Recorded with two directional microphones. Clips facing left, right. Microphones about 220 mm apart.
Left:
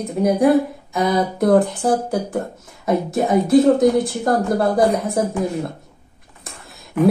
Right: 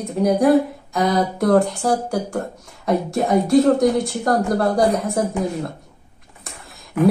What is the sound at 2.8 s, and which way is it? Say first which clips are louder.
Speech: left 1 dB; centre (ahead or behind).